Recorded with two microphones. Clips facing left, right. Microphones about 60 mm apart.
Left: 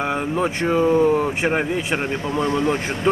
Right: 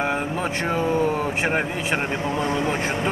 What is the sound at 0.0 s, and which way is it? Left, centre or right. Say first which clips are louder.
Speech: left 3 dB; centre.